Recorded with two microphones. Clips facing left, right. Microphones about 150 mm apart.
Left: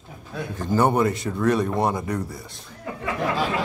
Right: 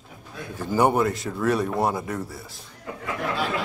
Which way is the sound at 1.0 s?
Centre (ahead or behind).